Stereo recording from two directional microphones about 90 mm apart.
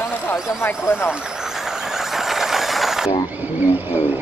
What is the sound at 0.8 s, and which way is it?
Speech, 25° left (ahead or behind).